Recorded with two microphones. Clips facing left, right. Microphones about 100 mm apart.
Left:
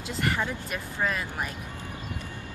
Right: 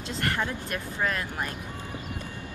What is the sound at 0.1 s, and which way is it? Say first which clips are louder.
Speech: left 1 dB; 5° left (ahead or behind).